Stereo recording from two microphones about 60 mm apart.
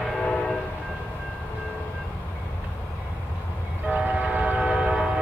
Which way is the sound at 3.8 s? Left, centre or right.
Right.